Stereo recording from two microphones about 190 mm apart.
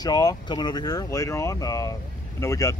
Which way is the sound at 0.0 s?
20° left (ahead or behind).